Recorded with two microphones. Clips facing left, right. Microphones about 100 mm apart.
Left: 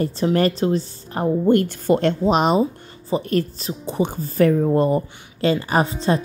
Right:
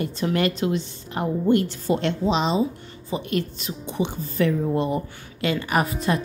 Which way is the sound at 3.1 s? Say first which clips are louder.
Left 5 dB; 40° left (ahead or behind).